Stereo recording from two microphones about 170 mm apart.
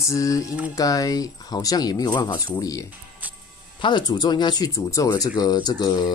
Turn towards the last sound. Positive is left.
turn(degrees=25)  # may be behind; listen again after turning